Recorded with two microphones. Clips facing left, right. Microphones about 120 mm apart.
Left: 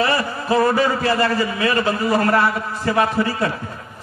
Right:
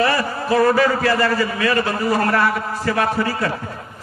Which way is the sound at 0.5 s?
25° left (ahead or behind).